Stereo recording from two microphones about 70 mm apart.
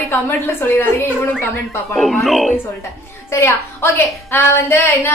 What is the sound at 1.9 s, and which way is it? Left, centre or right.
Speech, centre.